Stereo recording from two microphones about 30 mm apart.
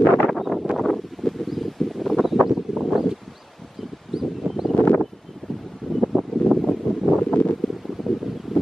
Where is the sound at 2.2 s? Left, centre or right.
Centre.